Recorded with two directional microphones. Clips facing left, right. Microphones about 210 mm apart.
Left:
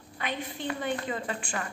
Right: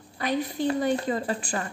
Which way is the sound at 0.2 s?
40° right (ahead or behind).